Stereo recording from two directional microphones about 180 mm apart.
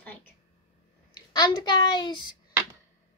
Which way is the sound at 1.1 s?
25° left (ahead or behind).